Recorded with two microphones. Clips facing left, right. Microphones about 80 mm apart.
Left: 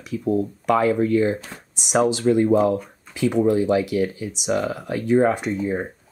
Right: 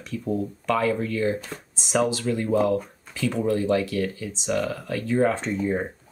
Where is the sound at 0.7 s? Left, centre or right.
Left.